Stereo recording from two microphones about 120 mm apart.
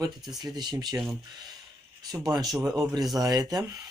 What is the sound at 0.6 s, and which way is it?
Speech, 35° right (ahead or behind).